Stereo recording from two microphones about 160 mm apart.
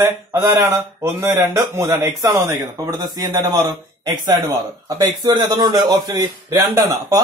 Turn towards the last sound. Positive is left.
turn(degrees=-20)  # may be behind; listen again after turning